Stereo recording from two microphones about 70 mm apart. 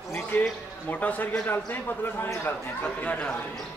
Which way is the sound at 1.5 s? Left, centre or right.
Left.